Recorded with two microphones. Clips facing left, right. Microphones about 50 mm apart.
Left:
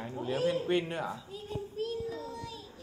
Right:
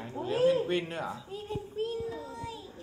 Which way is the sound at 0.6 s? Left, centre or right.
Centre.